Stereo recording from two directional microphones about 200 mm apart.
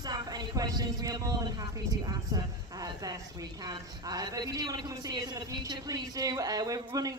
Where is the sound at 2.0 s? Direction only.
20° right (ahead or behind).